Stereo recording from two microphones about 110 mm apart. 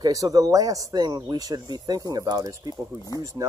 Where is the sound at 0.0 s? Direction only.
35° right (ahead or behind).